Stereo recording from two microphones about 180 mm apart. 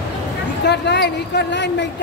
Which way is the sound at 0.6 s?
70° left (ahead or behind).